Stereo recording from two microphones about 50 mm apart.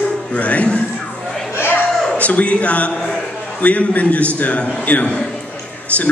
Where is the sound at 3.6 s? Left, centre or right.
Left.